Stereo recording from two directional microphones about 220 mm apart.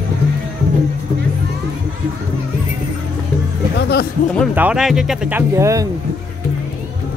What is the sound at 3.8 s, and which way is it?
Music, 50° left (ahead or behind).